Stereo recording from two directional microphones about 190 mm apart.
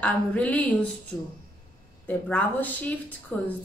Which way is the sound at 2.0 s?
10° left (ahead or behind).